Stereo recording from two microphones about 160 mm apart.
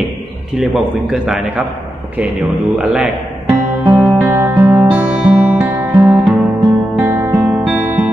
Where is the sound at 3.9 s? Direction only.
10° right (ahead or behind).